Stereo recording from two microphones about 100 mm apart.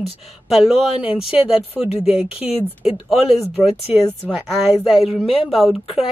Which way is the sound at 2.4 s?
75° left (ahead or behind).